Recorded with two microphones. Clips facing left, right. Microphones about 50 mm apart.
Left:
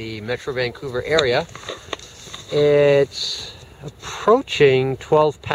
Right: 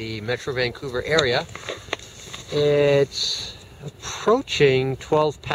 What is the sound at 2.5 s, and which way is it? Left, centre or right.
Speech, centre.